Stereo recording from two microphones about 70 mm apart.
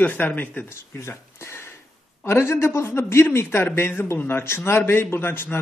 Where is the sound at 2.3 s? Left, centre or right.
Left.